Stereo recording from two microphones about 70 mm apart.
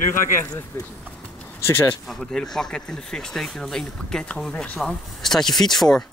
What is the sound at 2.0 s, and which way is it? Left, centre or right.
Speech, centre.